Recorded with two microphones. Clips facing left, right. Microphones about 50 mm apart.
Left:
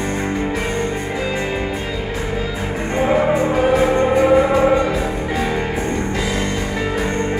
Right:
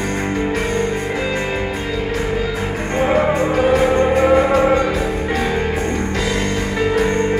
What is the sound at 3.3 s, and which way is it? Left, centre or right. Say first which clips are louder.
Music: even; centre.